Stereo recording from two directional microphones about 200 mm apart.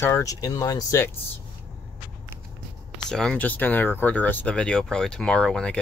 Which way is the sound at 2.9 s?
5° left (ahead or behind).